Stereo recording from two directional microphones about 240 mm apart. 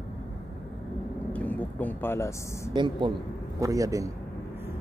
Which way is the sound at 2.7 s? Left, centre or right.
Centre.